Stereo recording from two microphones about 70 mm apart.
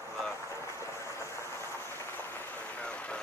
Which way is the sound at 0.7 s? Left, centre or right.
Left.